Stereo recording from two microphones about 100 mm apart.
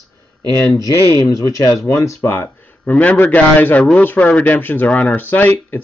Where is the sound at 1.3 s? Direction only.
35° left (ahead or behind).